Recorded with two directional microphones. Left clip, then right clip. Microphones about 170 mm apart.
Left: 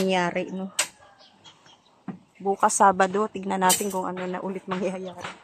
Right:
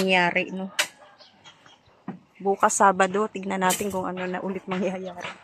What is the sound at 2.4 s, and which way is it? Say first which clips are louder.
Speech: even; 5° right (ahead or behind).